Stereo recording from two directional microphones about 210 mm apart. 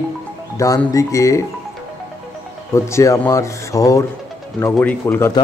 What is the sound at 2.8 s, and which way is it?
A man's voice, 15° left (ahead or behind).